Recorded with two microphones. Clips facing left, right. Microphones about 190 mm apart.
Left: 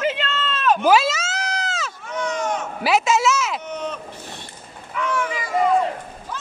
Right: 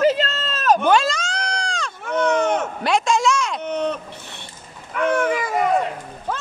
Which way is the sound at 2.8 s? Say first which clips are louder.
Left 5 dB; 5° left (ahead or behind).